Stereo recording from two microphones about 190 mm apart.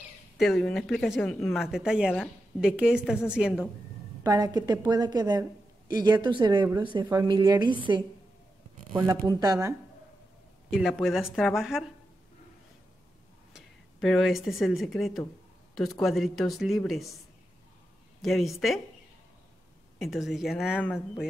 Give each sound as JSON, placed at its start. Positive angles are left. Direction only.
{"t": 0.4, "sound": "speech", "side_deg": 0}
{"t": 4.2, "sound": "a woman's voice", "side_deg": -20}
{"t": 8.9, "sound": "speech", "side_deg": -15}
{"t": 10.7, "sound": "speech", "side_deg": 0}
{"t": 13.9, "sound": "speech", "side_deg": 0}
{"t": 18.2, "sound": "speech", "side_deg": 0}
{"t": 20.0, "sound": "speech", "side_deg": 0}